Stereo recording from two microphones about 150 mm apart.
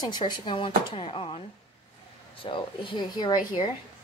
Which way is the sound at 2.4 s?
35° left (ahead or behind).